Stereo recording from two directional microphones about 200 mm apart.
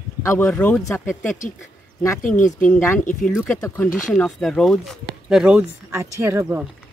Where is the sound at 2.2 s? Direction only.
40° left (ahead or behind).